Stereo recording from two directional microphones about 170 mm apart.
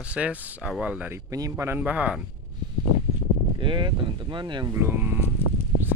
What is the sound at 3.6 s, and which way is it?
Speech, 30° right (ahead or behind).